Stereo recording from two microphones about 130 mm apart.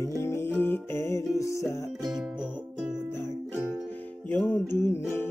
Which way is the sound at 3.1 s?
20° left (ahead or behind).